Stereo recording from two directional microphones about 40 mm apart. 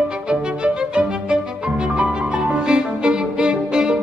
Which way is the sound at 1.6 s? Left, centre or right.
Right.